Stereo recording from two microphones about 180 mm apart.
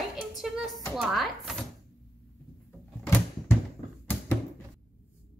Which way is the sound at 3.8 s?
45° right (ahead or behind).